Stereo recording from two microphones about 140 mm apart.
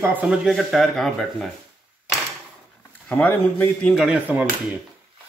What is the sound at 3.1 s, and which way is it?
Speech, 10° left (ahead or behind).